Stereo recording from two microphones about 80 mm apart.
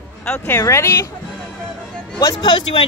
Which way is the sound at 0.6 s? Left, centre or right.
Left.